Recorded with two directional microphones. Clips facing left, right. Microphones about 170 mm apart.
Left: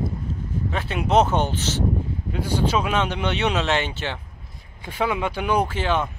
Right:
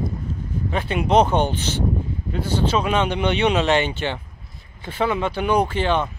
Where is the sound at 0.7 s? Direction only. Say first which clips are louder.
Right 2 dB; centre (ahead or behind).